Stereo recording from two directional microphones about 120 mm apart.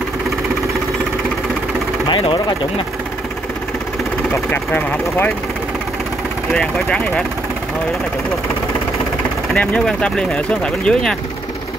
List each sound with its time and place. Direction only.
2.0 s speech: 40° left (ahead or behind)
4.5 s speech: 15° left (ahead or behind)
6.5 s speech: 5° left (ahead or behind)
9.5 s speech: 10° left (ahead or behind)